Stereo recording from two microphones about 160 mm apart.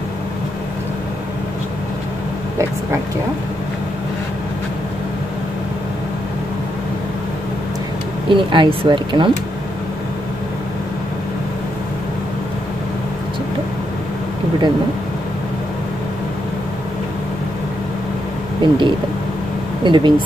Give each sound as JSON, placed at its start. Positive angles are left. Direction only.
{"t": 8.3, "sound": "speech", "side_deg": -30}
{"t": 18.6, "sound": "speech", "side_deg": -30}